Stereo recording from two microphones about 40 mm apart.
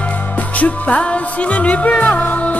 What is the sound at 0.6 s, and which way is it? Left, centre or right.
Music, left.